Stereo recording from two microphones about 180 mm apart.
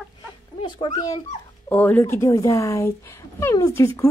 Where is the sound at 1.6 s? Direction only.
10° left (ahead or behind).